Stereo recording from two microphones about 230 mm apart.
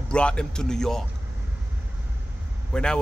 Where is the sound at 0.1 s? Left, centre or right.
Centre.